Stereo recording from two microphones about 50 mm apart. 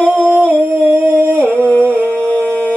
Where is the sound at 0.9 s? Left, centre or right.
Right.